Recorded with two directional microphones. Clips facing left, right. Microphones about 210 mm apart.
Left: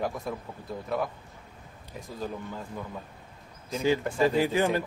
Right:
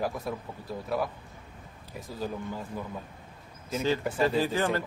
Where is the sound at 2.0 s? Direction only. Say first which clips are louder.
Right 1 dB; 5° right (ahead or behind).